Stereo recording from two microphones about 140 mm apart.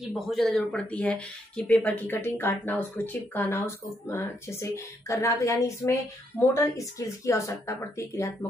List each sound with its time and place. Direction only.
0.1 s a woman's voice: centre (ahead or behind); by 7.7 s 20° left (ahead or behind)